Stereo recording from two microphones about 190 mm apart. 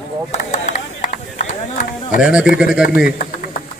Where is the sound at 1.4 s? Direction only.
40° left (ahead or behind).